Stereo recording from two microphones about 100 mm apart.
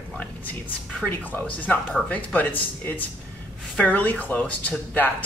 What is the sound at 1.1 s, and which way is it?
Speech, 20° left (ahead or behind).